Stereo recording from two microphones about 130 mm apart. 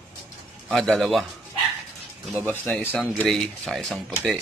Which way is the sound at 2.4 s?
15° left (ahead or behind).